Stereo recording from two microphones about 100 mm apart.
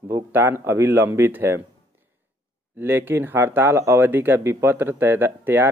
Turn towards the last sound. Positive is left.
turn(degrees=-20)  # may be behind; listen again after turning